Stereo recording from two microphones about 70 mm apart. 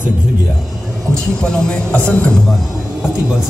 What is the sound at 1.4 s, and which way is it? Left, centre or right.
Speech, centre.